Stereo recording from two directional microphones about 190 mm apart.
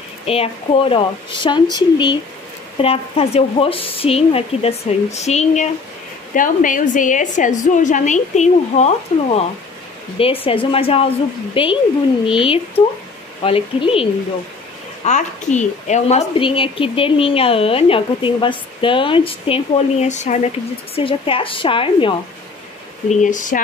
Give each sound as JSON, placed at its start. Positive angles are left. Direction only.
{"t": 0.3, "sound": "a woman's voice", "side_deg": 30}
{"t": 15.0, "sound": "a woman's voice", "side_deg": 40}
{"t": 23.0, "sound": "speech", "side_deg": 40}